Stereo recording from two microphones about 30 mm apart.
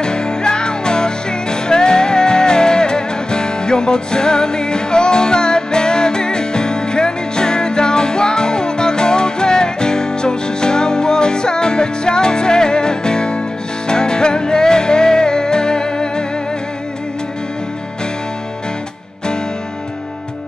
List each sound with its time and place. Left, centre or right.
0.0 s music: left